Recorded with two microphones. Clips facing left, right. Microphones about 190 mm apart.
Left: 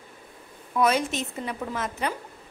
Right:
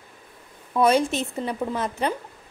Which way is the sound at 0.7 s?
30° right (ahead or behind).